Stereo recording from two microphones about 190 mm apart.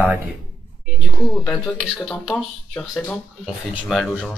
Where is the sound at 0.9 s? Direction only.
Centre (ahead or behind).